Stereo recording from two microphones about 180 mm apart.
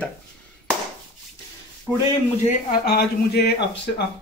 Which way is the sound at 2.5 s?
60° left (ahead or behind).